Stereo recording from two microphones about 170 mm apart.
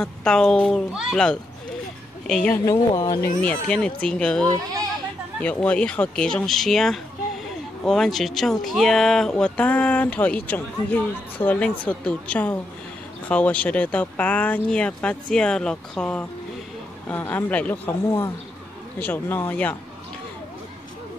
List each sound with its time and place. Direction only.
0.0 s speech: 5° left (ahead or behind); by 3.3 s 20° left (ahead or behind)
3.4 s speech: 5° left (ahead or behind)